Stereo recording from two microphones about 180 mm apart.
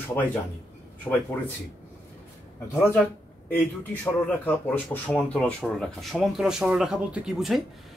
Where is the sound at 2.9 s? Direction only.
10° left (ahead or behind).